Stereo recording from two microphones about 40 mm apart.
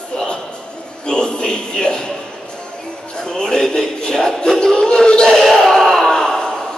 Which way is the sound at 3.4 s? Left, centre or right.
Centre.